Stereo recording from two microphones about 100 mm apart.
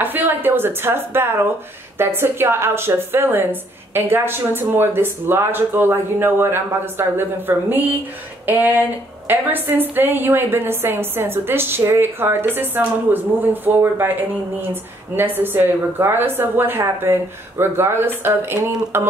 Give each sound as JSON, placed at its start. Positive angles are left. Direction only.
{"t": 0.0, "sound": "a woman's voice", "side_deg": -20}